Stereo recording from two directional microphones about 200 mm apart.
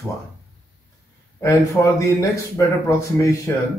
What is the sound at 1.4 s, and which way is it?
Speech, 15° left (ahead or behind).